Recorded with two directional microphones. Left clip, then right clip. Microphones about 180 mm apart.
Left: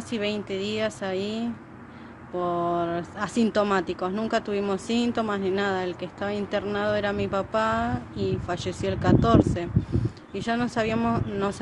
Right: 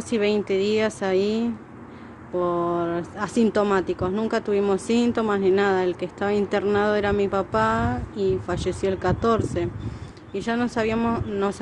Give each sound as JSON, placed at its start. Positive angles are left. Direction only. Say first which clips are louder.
{"t": 0.1, "sound": "a woman's voice", "louder": "right 7 dB", "side_deg": -20}
{"t": 2.3, "sound": "speech", "louder": "right 2 dB", "side_deg": -10}